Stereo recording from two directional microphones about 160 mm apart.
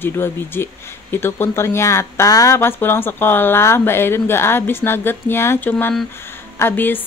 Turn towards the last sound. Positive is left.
turn(degrees=10)  # may be behind; listen again after turning